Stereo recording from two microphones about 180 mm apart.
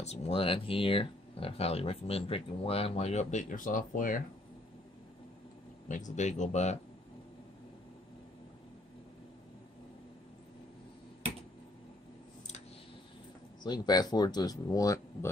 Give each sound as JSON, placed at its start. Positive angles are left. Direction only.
{"t": 0.0, "sound": "speech", "side_deg": 35}
{"t": 5.9, "sound": "speech", "side_deg": 45}
{"t": 13.6, "sound": "speech", "side_deg": 20}